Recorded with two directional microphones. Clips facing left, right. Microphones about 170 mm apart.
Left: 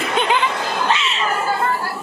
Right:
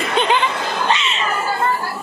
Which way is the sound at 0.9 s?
Centre (ahead or behind).